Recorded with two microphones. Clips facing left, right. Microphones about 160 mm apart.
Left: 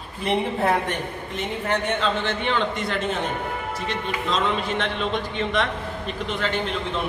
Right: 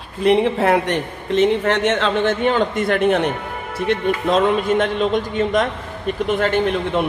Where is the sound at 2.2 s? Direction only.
45° right (ahead or behind).